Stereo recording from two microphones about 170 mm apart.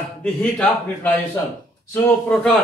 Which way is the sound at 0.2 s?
5° left (ahead or behind).